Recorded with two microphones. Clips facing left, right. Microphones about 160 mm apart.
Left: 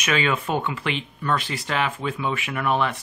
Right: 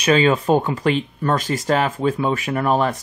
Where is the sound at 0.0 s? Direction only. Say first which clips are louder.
Right 8 dB; 35° right (ahead or behind).